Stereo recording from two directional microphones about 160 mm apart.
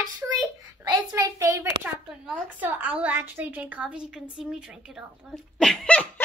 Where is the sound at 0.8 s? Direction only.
20° right (ahead or behind).